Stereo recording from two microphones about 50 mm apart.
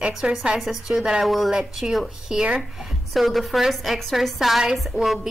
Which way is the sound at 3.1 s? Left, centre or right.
Centre.